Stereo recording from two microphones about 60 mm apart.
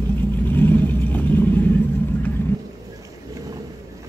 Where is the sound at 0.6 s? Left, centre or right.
Left.